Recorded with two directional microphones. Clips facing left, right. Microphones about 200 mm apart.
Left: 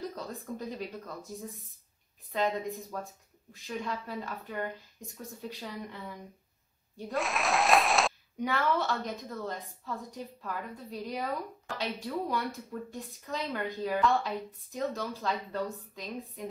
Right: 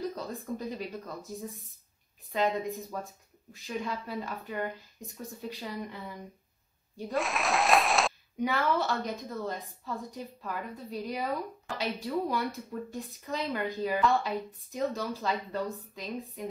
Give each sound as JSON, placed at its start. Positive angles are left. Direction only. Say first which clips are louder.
{"t": 0.1, "sound": "speech", "louder": "right 3 dB", "side_deg": 0}
{"t": 2.3, "sound": "speech", "louder": "right 2 dB", "side_deg": 0}